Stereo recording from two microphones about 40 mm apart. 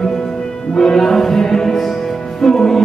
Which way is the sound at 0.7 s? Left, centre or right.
Centre.